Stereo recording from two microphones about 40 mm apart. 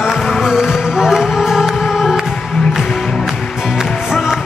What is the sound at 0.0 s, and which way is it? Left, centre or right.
Music, centre.